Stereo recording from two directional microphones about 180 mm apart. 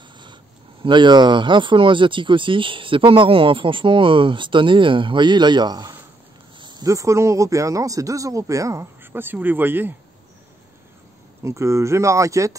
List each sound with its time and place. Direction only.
0.8 s speech: 25° right (ahead or behind)
11.4 s speech: 15° right (ahead or behind)